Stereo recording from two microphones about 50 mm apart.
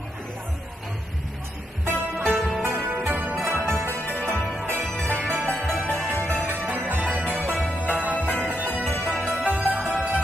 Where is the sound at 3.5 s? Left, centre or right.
Right.